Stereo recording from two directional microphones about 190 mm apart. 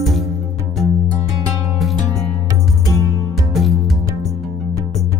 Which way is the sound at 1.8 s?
Centre (ahead or behind).